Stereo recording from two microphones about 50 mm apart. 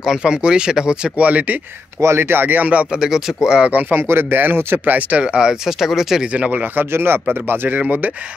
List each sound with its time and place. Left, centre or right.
0.2 s speech: centre
1.1 s speech: right
2.0 s speech: right
3.0 s speech: centre
4.1 s speech: right; by 6.2 s centre
6.3 s speech: right